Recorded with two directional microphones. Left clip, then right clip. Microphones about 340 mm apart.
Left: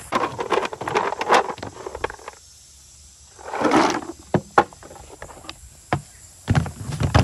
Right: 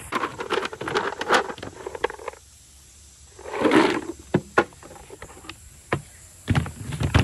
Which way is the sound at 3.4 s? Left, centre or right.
Left.